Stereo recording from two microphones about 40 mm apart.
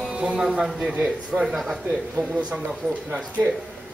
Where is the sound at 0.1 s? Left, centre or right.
Right.